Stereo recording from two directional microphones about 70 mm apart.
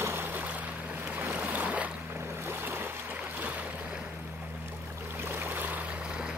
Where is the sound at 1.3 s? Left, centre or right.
Right.